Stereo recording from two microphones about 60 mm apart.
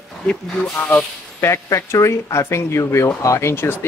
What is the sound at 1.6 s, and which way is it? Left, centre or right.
Speech, left.